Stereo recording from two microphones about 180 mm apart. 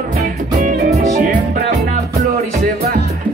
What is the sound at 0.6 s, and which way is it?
Music, 40° right (ahead or behind).